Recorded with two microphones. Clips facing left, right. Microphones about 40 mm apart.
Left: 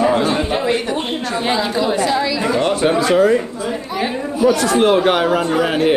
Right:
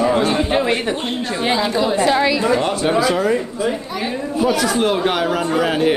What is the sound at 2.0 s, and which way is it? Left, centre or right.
Speech, right.